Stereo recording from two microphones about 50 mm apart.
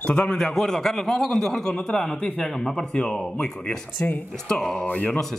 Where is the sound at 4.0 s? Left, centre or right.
Left.